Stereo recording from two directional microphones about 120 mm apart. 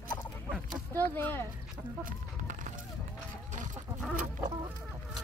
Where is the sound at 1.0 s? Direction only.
15° left (ahead or behind).